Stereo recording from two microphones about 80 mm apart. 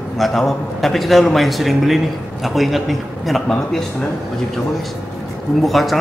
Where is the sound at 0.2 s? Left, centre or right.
Centre.